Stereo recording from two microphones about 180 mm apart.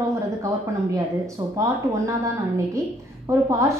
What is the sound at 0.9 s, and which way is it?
A woman's voice, 15° right (ahead or behind).